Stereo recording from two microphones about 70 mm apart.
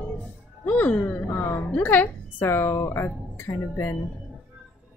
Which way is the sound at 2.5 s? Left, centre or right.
Left.